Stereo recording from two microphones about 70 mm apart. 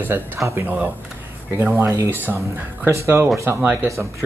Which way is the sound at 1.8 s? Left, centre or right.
Right.